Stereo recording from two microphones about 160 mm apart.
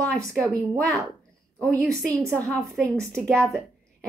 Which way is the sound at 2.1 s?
15° right (ahead or behind).